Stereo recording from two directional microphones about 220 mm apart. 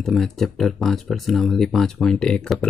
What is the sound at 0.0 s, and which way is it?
Speech, centre (ahead or behind).